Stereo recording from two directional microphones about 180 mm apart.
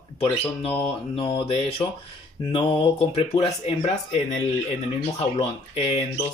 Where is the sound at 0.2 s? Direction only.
30° left (ahead or behind).